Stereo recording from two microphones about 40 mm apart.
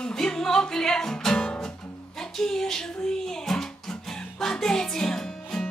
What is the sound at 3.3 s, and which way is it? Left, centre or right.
Music, centre.